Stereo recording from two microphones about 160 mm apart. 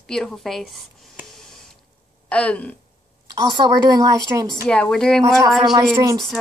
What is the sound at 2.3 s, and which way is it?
Speech, 5° left (ahead or behind).